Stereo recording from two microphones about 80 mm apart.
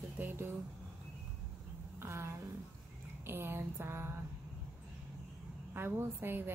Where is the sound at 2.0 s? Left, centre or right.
Right.